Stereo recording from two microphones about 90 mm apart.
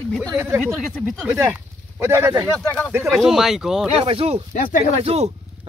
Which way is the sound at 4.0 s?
90° right.